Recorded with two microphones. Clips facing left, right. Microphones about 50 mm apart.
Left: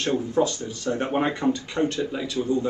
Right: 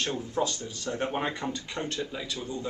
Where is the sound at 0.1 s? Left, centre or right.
Left.